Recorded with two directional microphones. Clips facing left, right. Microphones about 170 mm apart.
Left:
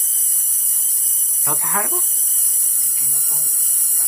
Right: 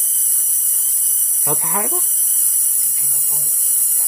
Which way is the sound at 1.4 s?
20° right (ahead or behind).